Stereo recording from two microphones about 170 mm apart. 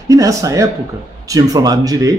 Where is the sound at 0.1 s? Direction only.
20° right (ahead or behind).